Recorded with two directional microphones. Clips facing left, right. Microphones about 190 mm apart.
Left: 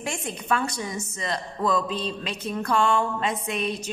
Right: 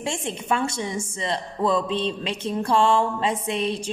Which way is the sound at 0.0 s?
25° right (ahead or behind).